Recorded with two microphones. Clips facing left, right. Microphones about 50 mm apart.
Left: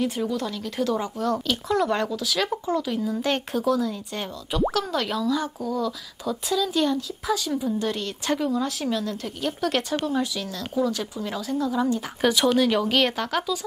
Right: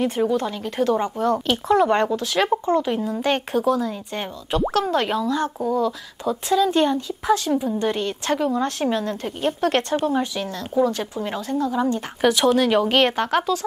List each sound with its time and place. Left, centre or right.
0.0 s speech: right
3.2 s speech: centre
4.5 s speech: right; by 8.5 s centre
8.6 s speech: right
12.2 s speech: centre
12.5 s speech: right